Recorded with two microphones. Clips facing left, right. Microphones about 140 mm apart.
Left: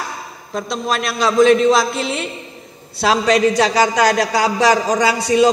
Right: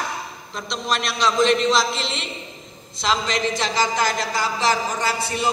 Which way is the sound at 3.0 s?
75° left (ahead or behind).